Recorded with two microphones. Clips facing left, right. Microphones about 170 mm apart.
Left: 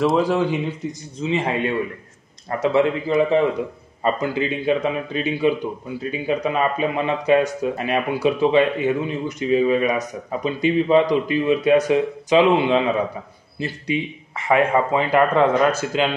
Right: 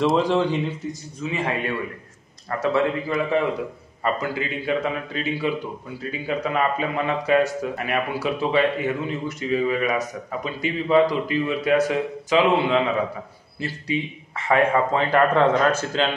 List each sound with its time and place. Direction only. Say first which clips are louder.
0.0 s speech: left 1 dB; 5° left (ahead or behind)
1.2 s a man's voice: left 4 dB; 25° left (ahead or behind)